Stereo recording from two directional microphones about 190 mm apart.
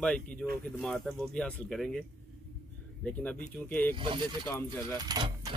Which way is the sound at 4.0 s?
25° right (ahead or behind).